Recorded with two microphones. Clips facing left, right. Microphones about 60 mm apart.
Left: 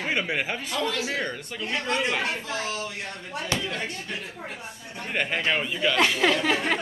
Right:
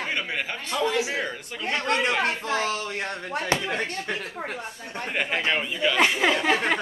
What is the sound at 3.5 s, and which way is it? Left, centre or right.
Speech, right.